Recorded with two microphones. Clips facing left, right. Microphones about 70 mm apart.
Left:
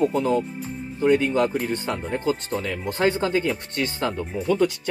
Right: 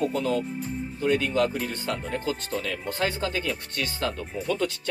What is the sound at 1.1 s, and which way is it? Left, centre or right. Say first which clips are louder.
Speech: left 3 dB; left.